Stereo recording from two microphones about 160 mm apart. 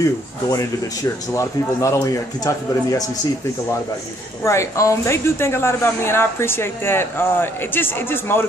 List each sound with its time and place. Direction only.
0.0 s a man's voice: 20° left (ahead or behind)
4.4 s a woman's voice: 20° left (ahead or behind)